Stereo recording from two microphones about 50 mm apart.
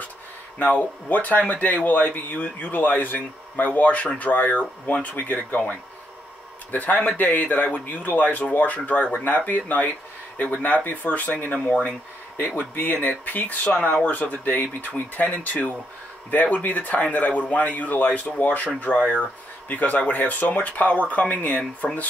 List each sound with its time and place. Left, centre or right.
0.6 s speech: left
6.7 s speech: left
12.4 s speech: left